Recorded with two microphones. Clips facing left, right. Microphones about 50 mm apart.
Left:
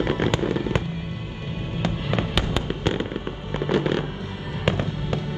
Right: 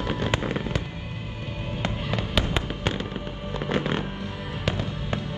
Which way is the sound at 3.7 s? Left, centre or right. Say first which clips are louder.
Left 4 dB; right.